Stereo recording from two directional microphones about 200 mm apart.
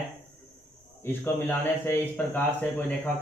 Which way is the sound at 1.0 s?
10° left (ahead or behind).